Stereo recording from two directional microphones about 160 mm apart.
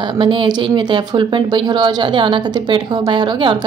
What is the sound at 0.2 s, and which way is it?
Speech, 30° right (ahead or behind).